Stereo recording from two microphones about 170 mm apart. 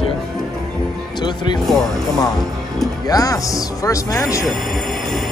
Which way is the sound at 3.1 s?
20° left (ahead or behind).